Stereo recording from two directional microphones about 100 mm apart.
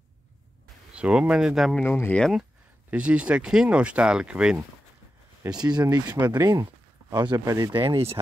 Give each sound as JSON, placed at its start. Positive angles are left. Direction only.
{"t": 0.9, "sound": "speech", "side_deg": -10}
{"t": 1.8, "sound": "speech", "side_deg": 20}
{"t": 2.9, "sound": "speech", "side_deg": -10}
{"t": 5.7, "sound": "speech", "side_deg": -40}
{"t": 7.2, "sound": "speech", "side_deg": -45}